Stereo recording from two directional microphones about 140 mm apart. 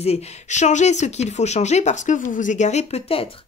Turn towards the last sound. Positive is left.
turn(degrees=45)  # may be behind; listen again after turning